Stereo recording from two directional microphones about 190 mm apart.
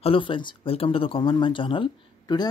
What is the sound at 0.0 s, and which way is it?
Speech, 25° left (ahead or behind).